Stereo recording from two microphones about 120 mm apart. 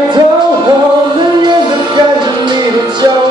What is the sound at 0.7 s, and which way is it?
Music, 35° right (ahead or behind).